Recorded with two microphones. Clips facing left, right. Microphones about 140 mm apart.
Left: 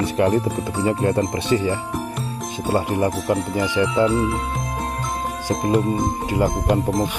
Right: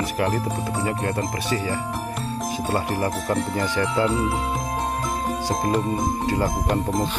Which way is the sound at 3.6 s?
15° left (ahead or behind).